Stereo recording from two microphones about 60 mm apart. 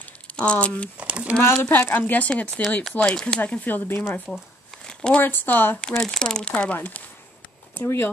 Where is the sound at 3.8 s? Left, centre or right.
Left.